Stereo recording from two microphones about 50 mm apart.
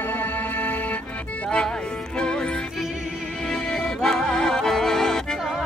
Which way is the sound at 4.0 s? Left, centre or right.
Centre.